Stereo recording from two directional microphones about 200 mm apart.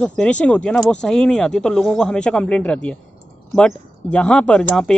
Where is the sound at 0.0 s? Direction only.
5° left (ahead or behind).